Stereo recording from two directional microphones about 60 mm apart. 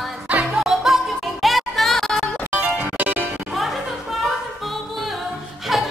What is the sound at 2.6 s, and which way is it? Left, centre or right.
Music, right.